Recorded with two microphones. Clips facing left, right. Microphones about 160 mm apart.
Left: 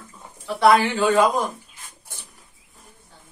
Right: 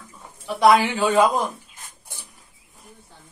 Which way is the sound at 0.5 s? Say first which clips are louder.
Even; 15° right (ahead or behind).